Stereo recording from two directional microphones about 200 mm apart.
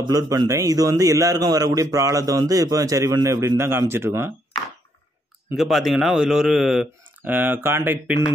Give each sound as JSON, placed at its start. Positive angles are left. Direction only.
{"t": 0.0, "sound": "a man's voice", "side_deg": -20}
{"t": 5.6, "sound": "a man's voice", "side_deg": 0}